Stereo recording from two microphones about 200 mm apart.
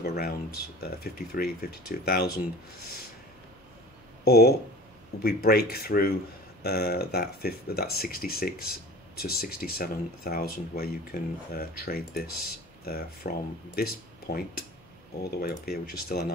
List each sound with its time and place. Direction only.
0.0 s speech: 50° left (ahead or behind)
4.2 s speech: 50° left (ahead or behind)